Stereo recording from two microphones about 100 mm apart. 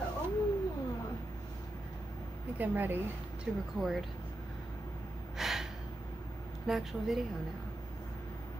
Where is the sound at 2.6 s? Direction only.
20° right (ahead or behind).